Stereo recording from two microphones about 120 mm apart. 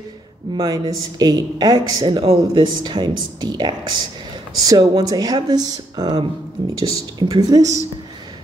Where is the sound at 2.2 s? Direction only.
60° right (ahead or behind).